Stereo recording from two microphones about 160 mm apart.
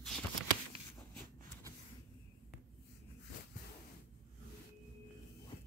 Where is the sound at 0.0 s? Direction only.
Centre (ahead or behind).